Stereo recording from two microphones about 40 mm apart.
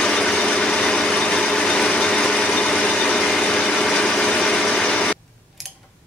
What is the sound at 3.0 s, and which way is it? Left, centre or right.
Ratchet, centre.